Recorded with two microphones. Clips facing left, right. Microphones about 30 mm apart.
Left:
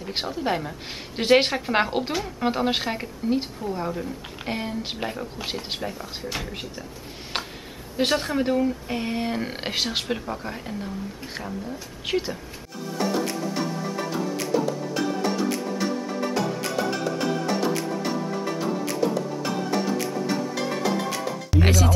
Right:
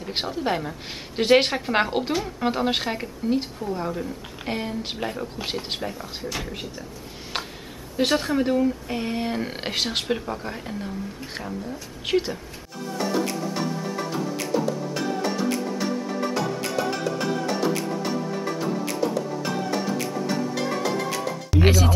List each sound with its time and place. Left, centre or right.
0.0 s a woman's voice: centre
7.3 s a sound: centre
8.0 s a woman's voice: centre
16.3 s music: centre
20.2 s music: centre